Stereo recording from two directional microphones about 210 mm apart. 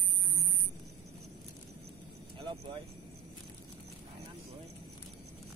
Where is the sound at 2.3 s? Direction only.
25° right (ahead or behind).